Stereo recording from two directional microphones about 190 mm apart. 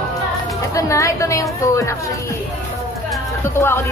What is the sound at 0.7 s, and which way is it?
A woman's voice, 15° left (ahead or behind).